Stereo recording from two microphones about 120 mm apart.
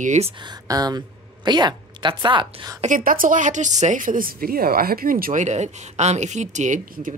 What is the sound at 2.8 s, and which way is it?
A woman's voice, 90° right.